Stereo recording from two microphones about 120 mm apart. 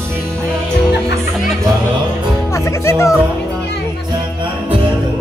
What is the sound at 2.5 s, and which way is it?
Speech, 25° left (ahead or behind).